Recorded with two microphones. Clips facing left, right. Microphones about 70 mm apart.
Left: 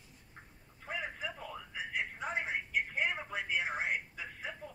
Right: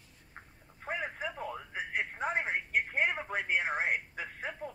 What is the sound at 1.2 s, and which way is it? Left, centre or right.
Radio, right.